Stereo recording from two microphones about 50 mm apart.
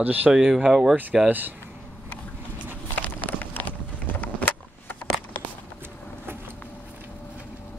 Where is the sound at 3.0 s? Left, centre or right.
Left.